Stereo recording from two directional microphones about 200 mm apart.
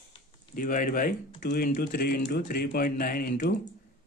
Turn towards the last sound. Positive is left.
turn(degrees=50)  # may be behind; listen again after turning